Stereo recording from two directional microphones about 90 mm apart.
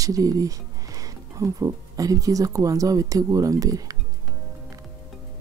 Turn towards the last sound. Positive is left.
turn(degrees=-40)  # may be behind; listen again after turning